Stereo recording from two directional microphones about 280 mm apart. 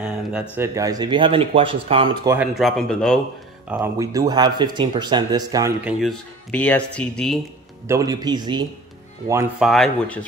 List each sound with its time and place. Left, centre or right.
0.0 s speech: centre
2.3 s speech: centre
3.7 s speech: centre
7.9 s speech: centre